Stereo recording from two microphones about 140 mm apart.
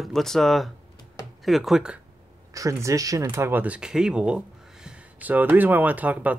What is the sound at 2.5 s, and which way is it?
Speech, 20° right (ahead or behind).